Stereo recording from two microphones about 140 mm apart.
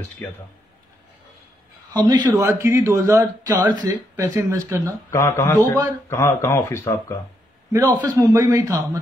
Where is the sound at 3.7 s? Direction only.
30° right (ahead or behind).